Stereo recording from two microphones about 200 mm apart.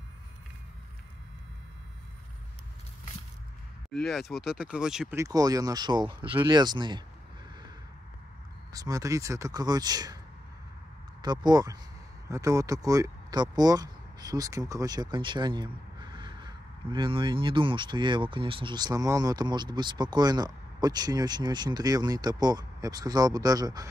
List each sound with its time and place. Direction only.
4.0 s speech: centre (ahead or behind)
5.1 s speech: 15° right (ahead or behind)
8.7 s speech: 15° right (ahead or behind)
11.1 s speech: 20° right (ahead or behind)